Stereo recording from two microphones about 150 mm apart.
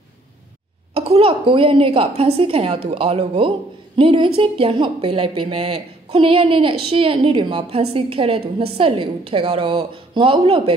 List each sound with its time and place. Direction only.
0.9 s a woman's voice: 40° right (ahead or behind)